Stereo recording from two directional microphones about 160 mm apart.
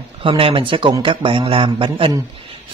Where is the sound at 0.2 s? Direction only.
35° right (ahead or behind).